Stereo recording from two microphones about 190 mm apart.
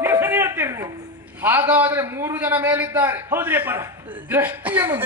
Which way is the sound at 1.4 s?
10° right (ahead or behind).